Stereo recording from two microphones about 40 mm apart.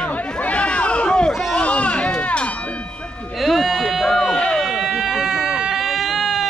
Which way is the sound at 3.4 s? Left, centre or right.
Centre.